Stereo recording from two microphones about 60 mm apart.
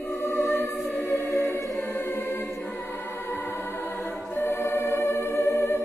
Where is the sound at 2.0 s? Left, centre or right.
Left.